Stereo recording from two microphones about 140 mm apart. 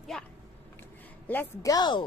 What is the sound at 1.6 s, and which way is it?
Speech, 30° left (ahead or behind).